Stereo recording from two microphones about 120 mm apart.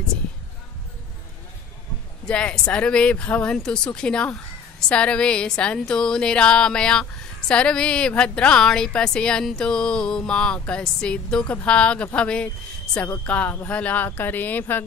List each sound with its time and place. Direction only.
2.2 s a woman's voice: 10° left (ahead or behind)